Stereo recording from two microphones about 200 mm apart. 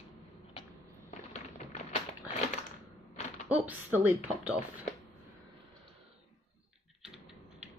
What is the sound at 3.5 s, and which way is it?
Speech, 10° right (ahead or behind).